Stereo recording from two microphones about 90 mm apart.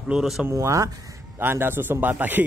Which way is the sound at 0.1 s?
5° right (ahead or behind).